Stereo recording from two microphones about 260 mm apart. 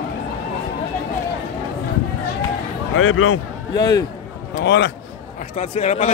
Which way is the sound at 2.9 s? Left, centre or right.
Left.